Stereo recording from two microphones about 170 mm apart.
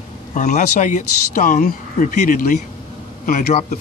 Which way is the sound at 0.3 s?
45° left (ahead or behind).